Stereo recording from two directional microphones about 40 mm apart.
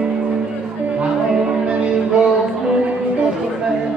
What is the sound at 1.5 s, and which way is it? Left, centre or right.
Music, right.